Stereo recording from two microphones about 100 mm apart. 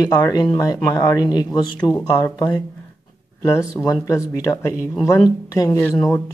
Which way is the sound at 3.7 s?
35° left (ahead or behind).